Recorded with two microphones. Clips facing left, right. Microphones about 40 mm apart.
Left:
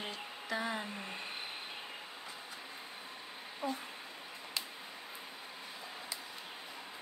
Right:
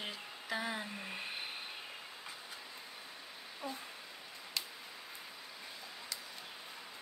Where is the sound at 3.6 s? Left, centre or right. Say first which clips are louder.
Left 6 dB; left.